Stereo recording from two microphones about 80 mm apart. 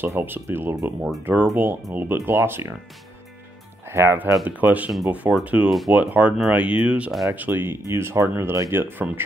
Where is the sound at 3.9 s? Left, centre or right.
Right.